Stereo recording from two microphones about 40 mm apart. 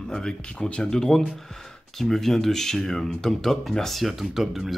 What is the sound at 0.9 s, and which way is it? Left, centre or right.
Speech, centre.